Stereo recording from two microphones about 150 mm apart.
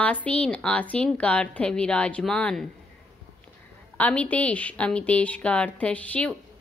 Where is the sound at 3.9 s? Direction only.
10° left (ahead or behind).